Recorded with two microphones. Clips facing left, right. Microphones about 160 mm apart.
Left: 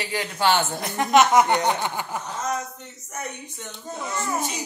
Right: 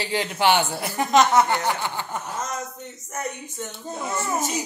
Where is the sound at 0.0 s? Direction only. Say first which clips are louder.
Right 2 dB; 25° right (ahead or behind).